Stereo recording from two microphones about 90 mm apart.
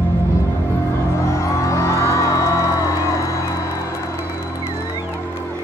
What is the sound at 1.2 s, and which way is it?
Music, 35° left (ahead or behind).